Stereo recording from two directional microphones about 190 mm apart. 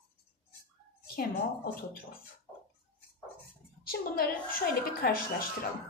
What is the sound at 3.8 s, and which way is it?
A woman's voice, 50° left (ahead or behind).